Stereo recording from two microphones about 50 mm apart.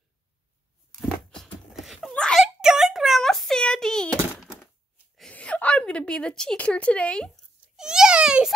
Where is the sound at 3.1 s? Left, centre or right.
Centre.